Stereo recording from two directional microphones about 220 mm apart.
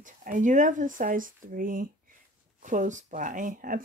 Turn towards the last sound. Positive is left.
turn(degrees=-35)  # may be behind; listen again after turning